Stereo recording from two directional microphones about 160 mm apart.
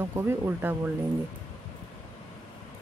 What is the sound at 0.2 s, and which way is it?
Speech, 15° right (ahead or behind).